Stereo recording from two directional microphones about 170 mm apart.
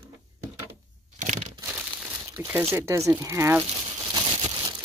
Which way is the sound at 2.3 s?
15° right (ahead or behind).